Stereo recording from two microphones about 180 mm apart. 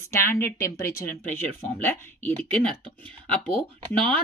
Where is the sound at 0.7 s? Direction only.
15° left (ahead or behind).